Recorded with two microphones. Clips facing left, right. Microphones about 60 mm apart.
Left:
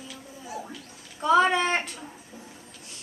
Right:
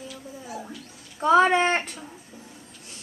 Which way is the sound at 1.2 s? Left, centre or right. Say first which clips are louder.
Right 3 dB; right.